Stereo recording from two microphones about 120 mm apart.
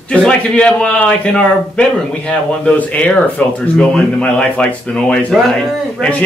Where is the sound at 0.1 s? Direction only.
10° left (ahead or behind).